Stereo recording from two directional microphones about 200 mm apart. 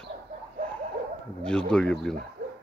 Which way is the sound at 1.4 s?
5° left (ahead or behind).